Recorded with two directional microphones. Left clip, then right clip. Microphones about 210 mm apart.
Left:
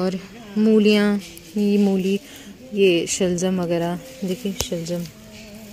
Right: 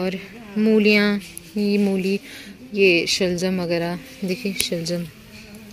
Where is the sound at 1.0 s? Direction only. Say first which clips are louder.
Right 1 dB; 5° left (ahead or behind).